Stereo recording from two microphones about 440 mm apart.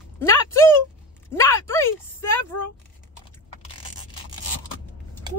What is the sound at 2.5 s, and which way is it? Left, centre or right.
Speech, left.